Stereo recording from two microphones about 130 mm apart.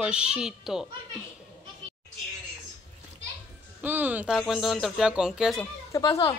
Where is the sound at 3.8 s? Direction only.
15° right (ahead or behind).